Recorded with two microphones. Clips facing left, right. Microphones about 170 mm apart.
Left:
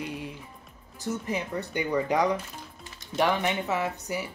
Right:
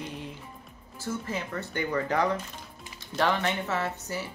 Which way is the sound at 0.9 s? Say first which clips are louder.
Left 2 dB; 15° left (ahead or behind).